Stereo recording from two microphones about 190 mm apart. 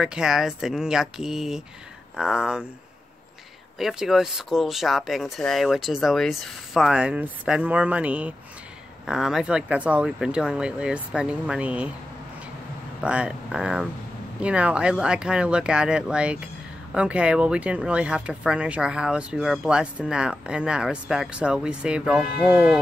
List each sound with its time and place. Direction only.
0.0 s speech: 5° right (ahead or behind)
3.7 s speech: centre (ahead or behind)
13.0 s speech: 5° right (ahead or behind)